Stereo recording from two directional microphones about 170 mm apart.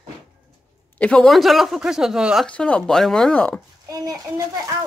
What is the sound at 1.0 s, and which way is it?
Speech, 5° left (ahead or behind).